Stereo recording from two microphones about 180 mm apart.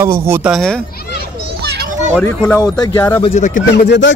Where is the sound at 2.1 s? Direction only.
5° left (ahead or behind).